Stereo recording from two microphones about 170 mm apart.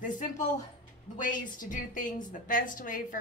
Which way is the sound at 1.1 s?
50° left (ahead or behind).